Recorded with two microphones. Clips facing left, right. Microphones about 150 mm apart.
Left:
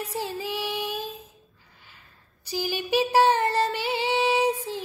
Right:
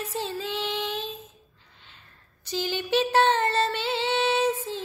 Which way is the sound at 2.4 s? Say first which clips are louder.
Even; 10° left (ahead or behind).